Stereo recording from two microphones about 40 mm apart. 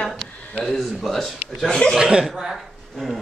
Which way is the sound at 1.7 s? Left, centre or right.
Left.